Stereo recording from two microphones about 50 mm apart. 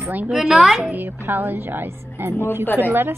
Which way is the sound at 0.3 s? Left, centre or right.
Centre.